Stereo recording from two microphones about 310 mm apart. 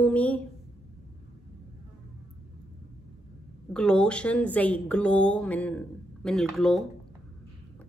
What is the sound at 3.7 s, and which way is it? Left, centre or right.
A woman's voice, centre.